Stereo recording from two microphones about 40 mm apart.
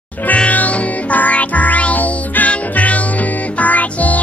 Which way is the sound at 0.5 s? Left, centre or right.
Left.